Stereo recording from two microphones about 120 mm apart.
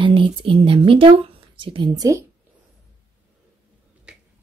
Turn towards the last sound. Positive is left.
turn(degrees=-10)  # may be behind; listen again after turning